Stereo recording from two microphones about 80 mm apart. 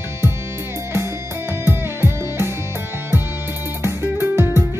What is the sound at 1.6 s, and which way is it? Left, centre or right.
Music, right.